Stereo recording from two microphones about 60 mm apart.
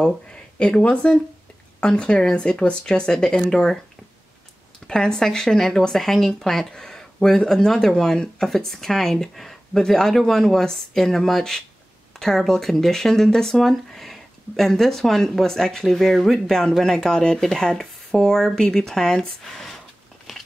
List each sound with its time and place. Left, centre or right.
0.0 s speech: centre
4.8 s speech: centre